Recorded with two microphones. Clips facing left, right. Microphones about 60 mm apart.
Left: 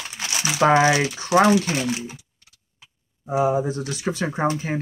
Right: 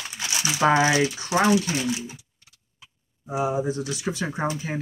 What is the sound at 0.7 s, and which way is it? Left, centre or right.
Speech, left.